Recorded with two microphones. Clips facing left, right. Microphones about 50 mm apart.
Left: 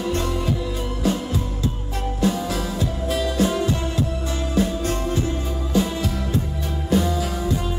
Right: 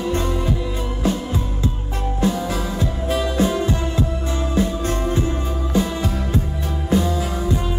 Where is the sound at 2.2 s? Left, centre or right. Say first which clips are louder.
Right 1 dB; right.